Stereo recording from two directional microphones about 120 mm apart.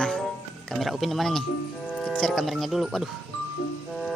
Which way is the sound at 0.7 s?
Centre (ahead or behind).